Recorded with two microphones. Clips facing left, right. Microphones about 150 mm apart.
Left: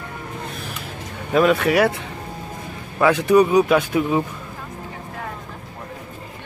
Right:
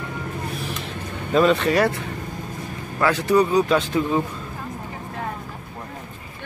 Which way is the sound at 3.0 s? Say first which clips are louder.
Left 4 dB; 15° left (ahead or behind).